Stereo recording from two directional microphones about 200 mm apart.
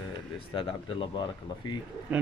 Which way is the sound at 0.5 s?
25° left (ahead or behind).